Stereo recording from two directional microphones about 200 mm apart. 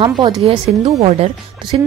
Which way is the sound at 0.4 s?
30° right (ahead or behind).